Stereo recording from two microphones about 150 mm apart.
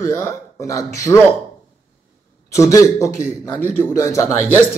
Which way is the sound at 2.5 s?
20° left (ahead or behind).